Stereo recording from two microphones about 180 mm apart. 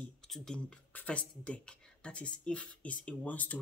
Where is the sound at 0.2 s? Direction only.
5° left (ahead or behind).